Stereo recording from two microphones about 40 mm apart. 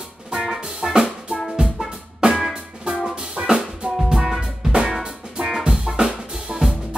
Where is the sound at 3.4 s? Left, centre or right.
Right.